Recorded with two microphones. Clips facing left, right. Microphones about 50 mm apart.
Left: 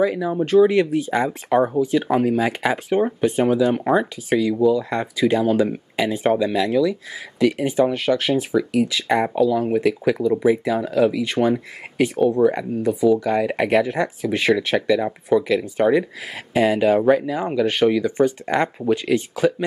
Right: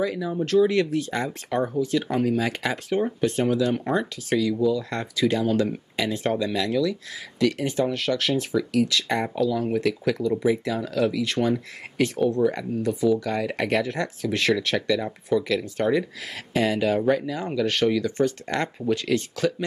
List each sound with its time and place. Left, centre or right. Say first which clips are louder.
0.0 s speech: left 6 dB; centre